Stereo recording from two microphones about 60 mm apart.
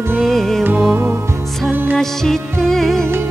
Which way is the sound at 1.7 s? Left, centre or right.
Right.